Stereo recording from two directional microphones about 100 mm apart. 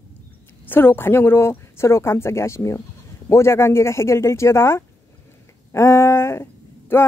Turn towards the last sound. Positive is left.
turn(degrees=25)  # may be behind; listen again after turning